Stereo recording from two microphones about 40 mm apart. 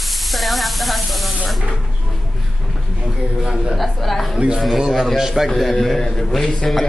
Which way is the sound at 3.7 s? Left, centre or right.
Centre.